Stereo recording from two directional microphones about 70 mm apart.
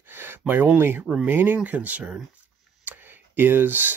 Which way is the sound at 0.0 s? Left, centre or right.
Right.